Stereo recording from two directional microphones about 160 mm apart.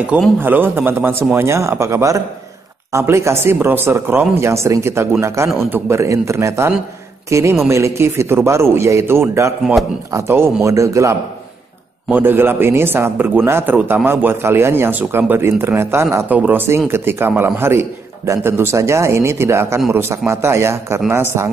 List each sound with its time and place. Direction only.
0.0 s a man's voice: 10° right (ahead or behind)